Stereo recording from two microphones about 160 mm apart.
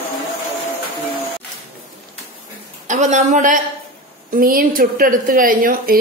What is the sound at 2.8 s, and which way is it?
A woman's voice, 45° right (ahead or behind).